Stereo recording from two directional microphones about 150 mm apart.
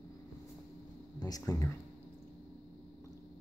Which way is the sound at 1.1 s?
25° left (ahead or behind).